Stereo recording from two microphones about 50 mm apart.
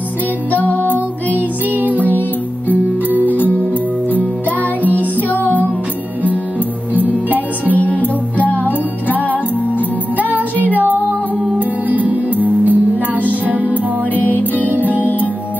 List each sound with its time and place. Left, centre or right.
0.5 s music: left
1.3 s music: right
3.3 s music: left
6.9 s music: right
7.3 s music: left
9.8 s music: right
14.1 s music: left